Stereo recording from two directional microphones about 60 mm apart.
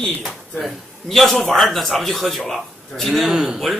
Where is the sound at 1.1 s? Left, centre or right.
Centre.